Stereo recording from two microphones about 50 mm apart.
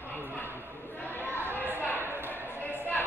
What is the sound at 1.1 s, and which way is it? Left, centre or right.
Chatter, left.